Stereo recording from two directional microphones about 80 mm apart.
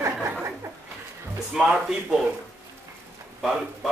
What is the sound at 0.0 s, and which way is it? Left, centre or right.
Chuckle, right.